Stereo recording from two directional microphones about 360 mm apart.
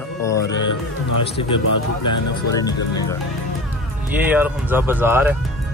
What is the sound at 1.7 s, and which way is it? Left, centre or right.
Speech, left.